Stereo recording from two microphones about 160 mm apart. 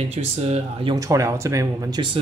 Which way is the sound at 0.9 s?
20° right (ahead or behind).